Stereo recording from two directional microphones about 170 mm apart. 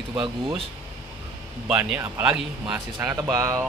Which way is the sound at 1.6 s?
5° right (ahead or behind).